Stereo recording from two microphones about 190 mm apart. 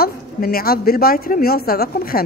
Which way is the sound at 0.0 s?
50° left (ahead or behind).